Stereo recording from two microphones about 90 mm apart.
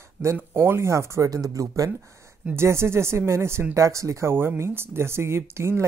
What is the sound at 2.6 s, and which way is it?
Speech, 30° right (ahead or behind).